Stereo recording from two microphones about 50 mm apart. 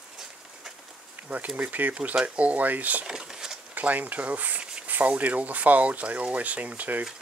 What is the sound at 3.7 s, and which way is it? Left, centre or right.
Speech, right.